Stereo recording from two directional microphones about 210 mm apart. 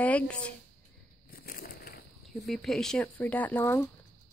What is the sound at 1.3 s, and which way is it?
Crushing, 45° left (ahead or behind).